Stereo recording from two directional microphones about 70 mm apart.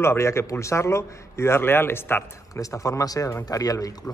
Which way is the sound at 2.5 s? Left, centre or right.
Left.